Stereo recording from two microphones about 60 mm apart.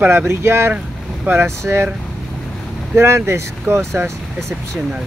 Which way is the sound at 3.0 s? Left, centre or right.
Right.